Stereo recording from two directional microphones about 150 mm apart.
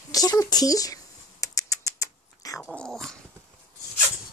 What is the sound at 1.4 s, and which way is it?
Typing, 20° left (ahead or behind).